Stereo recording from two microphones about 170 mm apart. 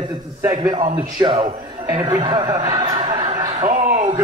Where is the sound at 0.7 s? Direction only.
35° right (ahead or behind); by 3.0 s 20° right (ahead or behind).